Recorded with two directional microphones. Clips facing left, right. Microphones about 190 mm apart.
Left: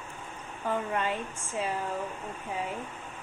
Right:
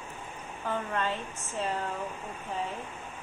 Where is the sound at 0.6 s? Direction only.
15° left (ahead or behind).